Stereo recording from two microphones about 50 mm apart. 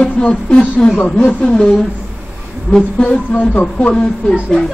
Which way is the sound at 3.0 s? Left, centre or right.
Left.